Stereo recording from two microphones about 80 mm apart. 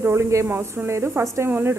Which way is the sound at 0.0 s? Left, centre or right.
Right.